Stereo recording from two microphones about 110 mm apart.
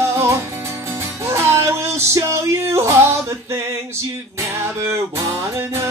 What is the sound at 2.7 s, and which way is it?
Yodeling, 25° right (ahead or behind).